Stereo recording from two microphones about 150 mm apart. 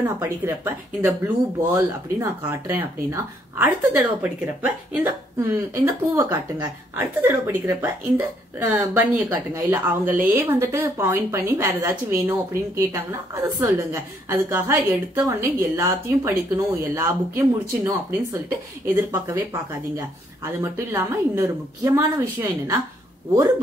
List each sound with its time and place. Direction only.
0.0 s speech: 15° right (ahead or behind)